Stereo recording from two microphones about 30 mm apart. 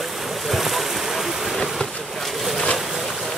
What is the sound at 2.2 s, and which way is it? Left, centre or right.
Speech, centre.